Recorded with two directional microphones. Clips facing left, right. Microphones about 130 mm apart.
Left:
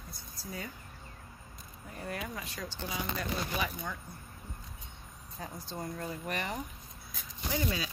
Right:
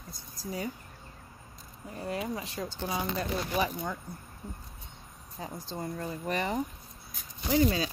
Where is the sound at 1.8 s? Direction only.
20° right (ahead or behind).